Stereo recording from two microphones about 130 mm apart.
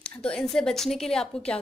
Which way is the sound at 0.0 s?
5° left (ahead or behind).